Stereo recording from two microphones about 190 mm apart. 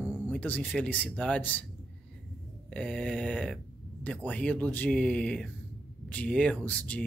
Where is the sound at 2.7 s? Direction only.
5° left (ahead or behind).